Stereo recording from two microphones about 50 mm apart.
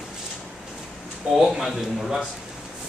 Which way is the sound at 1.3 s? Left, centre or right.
Centre.